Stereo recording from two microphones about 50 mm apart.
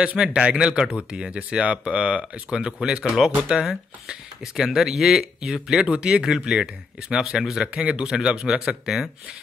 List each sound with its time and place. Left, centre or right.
0.0 s speech: right
7.6 s speech: right